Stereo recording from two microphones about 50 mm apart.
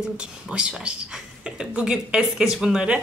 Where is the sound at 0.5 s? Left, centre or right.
Centre.